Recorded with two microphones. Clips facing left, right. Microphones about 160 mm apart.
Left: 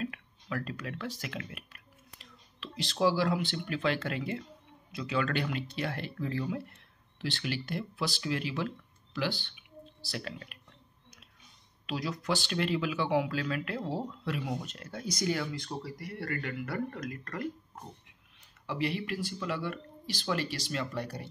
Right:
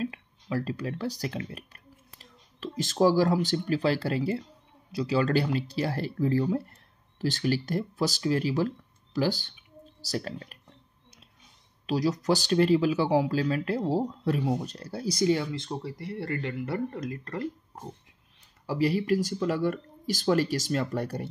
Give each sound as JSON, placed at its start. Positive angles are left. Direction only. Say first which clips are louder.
{"t": 0.0, "sound": "speech", "louder": "right 4 dB", "side_deg": -30}
{"t": 11.8, "sound": "speech", "louder": "right 9 dB", "side_deg": -40}
{"t": 18.7, "sound": "speech", "louder": "right 8 dB", "side_deg": -40}